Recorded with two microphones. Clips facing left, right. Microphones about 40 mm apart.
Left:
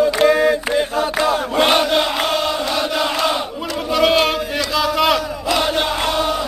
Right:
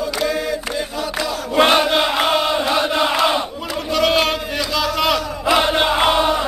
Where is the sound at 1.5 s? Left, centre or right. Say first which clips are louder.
Right 3 dB; centre.